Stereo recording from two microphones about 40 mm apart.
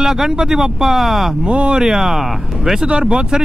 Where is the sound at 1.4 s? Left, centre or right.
Right.